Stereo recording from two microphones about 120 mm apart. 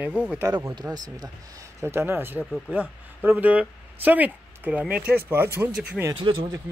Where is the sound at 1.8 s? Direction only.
20° right (ahead or behind).